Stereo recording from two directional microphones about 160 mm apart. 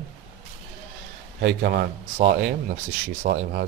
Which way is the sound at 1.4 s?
80° right.